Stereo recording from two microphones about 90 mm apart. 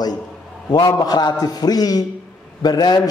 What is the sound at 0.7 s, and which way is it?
A man's voice, 50° left (ahead or behind).